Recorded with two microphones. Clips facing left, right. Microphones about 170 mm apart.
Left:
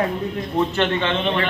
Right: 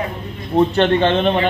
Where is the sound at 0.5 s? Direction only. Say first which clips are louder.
Right 7 dB; 35° right (ahead or behind).